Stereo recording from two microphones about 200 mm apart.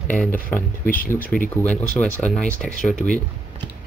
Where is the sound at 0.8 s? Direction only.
45° left (ahead or behind).